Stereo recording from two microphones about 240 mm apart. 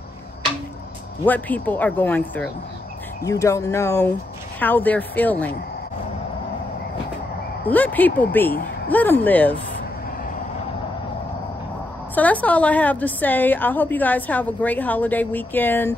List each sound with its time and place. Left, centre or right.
1.2 s a woman's voice: centre
7.6 s a woman's voice: centre
12.2 s a woman's voice: centre